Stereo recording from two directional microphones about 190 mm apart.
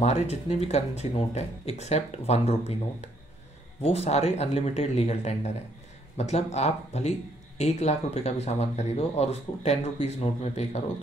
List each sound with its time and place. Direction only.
0.0 s speech: 35° left (ahead or behind)
3.8 s speech: 35° left (ahead or behind)